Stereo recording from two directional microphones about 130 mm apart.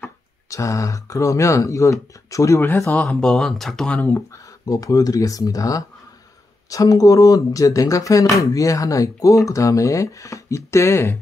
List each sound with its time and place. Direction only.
0.5 s speech: 25° left (ahead or behind)
4.3 s speech: 25° left (ahead or behind)